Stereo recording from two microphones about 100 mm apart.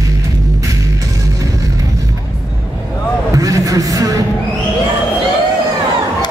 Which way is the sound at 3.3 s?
35° right (ahead or behind).